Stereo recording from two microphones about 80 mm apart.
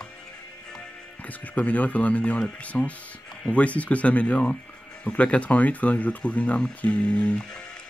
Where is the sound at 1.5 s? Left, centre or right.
Centre.